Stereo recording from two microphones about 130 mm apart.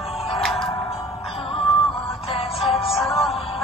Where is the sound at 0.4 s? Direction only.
Centre (ahead or behind).